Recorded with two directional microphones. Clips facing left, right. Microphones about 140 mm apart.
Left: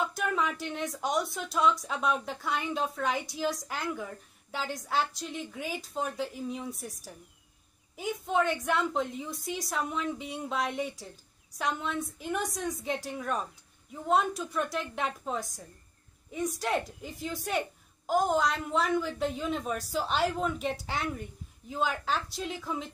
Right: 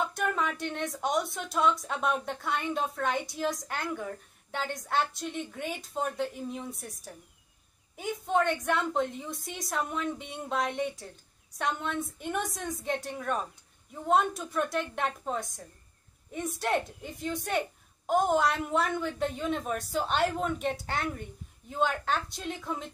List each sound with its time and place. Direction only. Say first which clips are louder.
0.1 s speech: even; centre (ahead or behind)